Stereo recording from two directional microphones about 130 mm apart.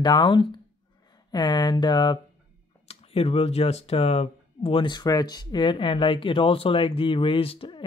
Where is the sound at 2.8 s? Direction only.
50° left (ahead or behind).